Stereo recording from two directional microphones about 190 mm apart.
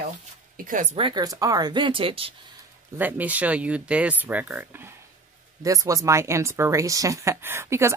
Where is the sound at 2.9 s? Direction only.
10° right (ahead or behind).